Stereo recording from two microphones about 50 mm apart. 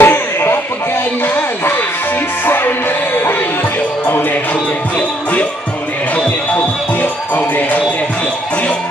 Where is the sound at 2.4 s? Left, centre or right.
Left.